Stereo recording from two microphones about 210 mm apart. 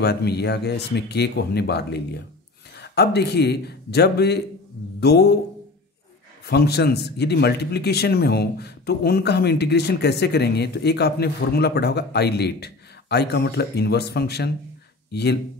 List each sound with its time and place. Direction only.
0.0 s a man's voice: 50° left (ahead or behind)
6.4 s a man's voice: 50° left (ahead or behind)